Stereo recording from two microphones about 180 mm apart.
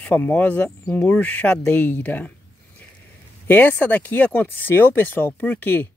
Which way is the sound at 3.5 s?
10° left (ahead or behind).